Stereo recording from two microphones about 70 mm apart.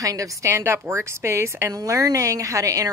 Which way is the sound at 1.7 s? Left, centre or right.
Right.